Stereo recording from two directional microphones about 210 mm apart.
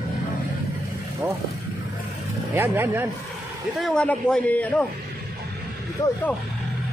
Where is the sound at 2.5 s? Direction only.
10° right (ahead or behind).